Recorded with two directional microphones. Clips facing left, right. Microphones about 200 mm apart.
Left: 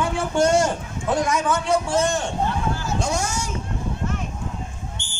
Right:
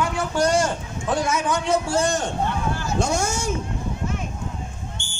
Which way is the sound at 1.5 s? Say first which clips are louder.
Left 1 dB; 15° right (ahead or behind).